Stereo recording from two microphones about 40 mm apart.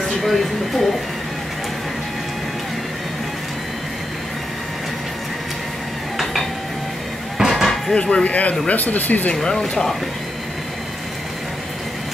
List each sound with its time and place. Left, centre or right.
0.2 s speech: centre
7.3 s a sound: centre
7.9 s speech: left
9.3 s speech: centre